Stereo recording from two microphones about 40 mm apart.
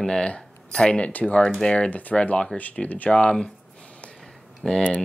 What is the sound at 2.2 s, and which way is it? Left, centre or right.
Speech, left.